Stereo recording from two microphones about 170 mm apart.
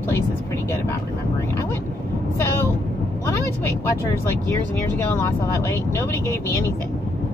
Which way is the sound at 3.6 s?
15° left (ahead or behind).